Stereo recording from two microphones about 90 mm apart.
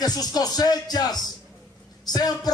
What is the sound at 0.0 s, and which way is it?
A man's voice, 45° left (ahead or behind).